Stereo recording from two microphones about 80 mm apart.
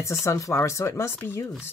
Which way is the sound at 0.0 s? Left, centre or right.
Left.